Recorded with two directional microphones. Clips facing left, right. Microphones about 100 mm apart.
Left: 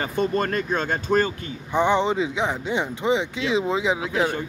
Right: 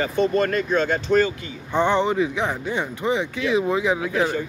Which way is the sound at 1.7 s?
15° left (ahead or behind).